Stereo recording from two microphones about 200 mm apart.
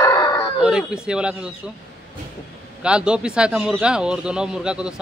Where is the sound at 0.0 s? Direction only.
20° left (ahead or behind).